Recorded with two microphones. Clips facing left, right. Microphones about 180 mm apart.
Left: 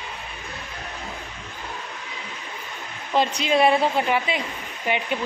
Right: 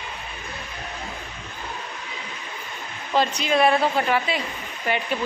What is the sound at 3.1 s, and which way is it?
A woman's voice, 25° left (ahead or behind).